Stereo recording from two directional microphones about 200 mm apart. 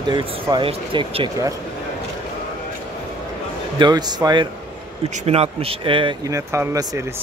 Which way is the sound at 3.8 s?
20° right (ahead or behind).